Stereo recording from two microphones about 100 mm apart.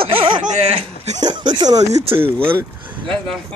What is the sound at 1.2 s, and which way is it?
Speech, 50° right (ahead or behind).